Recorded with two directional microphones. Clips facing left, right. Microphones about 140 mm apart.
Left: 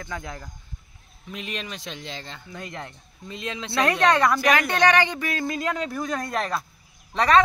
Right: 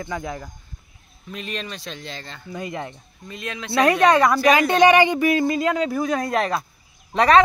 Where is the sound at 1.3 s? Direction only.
15° left (ahead or behind).